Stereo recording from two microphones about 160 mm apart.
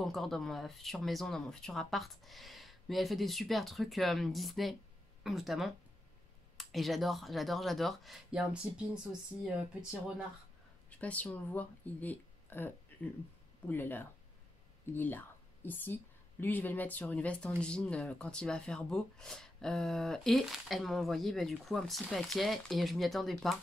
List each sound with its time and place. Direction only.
0.0 s a woman's voice: centre (ahead or behind)
10.9 s a woman's voice: 10° left (ahead or behind)